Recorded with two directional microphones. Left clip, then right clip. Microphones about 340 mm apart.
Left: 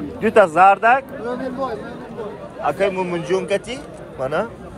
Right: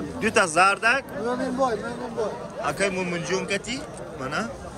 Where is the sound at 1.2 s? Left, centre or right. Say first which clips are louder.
Even; right.